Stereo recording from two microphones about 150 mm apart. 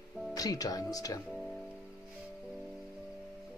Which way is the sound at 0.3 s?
25° left (ahead or behind).